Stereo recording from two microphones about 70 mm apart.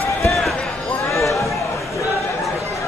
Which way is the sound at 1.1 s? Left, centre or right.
Left.